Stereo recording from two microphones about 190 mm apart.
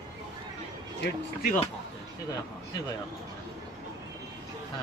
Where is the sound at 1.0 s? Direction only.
50° left (ahead or behind).